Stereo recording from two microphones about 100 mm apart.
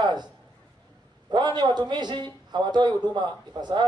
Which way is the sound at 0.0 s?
45° right (ahead or behind).